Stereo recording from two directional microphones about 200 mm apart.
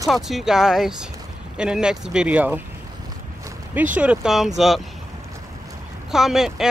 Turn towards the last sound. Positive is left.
turn(degrees=0)  # may be behind; listen again after turning